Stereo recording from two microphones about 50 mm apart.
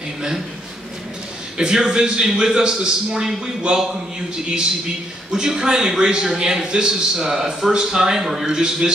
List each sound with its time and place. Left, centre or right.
1.6 s a man's voice: centre
5.3 s a man's voice: centre